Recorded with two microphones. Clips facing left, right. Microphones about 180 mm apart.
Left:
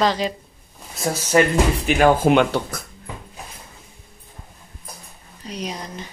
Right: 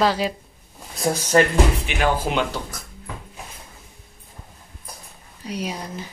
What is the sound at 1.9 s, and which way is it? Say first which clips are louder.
Speech: left 7 dB; 50° left (ahead or behind).